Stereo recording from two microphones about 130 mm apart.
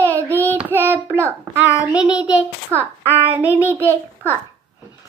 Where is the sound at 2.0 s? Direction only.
10° right (ahead or behind).